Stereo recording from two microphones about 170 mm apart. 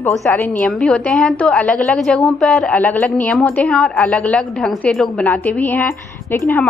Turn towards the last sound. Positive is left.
turn(degrees=10)  # may be behind; listen again after turning